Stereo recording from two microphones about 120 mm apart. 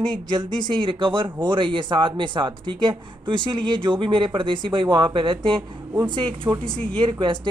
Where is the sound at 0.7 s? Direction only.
45° right (ahead or behind).